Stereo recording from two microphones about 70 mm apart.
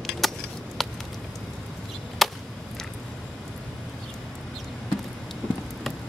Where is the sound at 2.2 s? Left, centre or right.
Centre.